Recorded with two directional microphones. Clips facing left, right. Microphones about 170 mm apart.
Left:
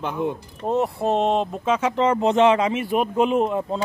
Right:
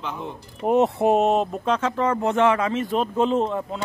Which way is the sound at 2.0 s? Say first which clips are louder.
Left 4 dB; 20° left (ahead or behind).